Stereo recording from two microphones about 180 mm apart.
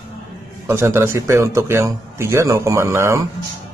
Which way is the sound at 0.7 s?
15° right (ahead or behind).